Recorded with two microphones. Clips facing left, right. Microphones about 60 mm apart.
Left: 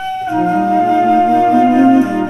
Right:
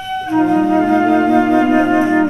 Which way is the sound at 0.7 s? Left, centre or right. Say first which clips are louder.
Left 1 dB; right.